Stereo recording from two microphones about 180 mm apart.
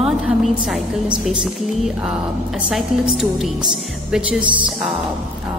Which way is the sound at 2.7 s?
Centre (ahead or behind).